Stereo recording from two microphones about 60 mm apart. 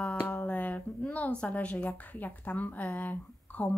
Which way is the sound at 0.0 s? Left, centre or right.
Centre.